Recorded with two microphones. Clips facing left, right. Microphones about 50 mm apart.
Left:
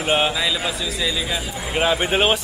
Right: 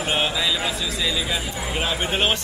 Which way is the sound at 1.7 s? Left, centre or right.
Centre.